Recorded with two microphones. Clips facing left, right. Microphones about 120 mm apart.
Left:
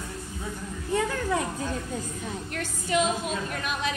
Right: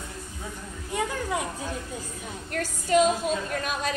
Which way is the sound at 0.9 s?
15° right (ahead or behind).